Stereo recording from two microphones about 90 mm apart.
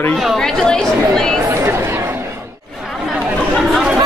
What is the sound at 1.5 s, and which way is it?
Chatter, 25° right (ahead or behind).